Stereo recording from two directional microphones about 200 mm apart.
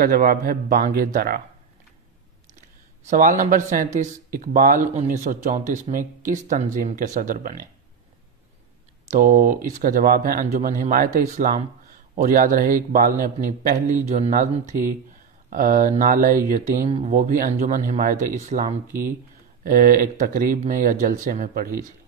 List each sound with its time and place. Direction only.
0.0 s speech: 45° right (ahead or behind)
3.1 s a man's voice: 40° right (ahead or behind)
9.1 s a man's voice: 40° right (ahead or behind)
18.9 s speech: 10° right (ahead or behind)
19.6 s speech: 45° right (ahead or behind)